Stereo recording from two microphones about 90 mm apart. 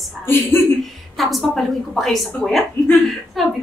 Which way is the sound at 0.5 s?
25° left (ahead or behind).